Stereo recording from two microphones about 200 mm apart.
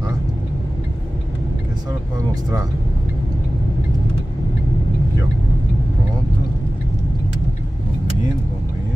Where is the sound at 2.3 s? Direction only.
20° right (ahead or behind).